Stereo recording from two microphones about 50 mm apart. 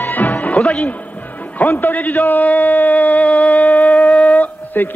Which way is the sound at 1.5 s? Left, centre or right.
Left.